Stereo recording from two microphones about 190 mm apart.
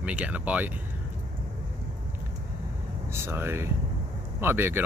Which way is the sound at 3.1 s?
10° right (ahead or behind).